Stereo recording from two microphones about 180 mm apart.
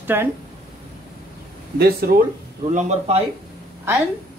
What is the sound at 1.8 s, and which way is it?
Speech, 60° right (ahead or behind).